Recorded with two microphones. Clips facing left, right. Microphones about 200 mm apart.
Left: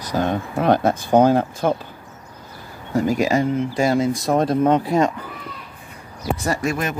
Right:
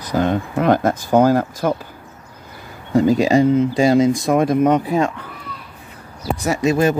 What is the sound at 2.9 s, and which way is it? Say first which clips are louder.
Speech: right 4 dB; 25° right (ahead or behind).